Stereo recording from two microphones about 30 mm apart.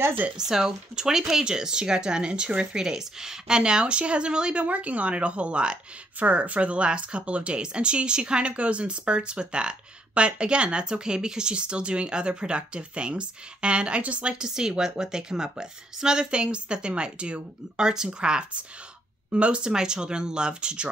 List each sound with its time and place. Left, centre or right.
0.5 s speech: centre
4.6 s speech: right
6.1 s speech: right
14.4 s speech: right
17.7 s speech: right
19.7 s speech: right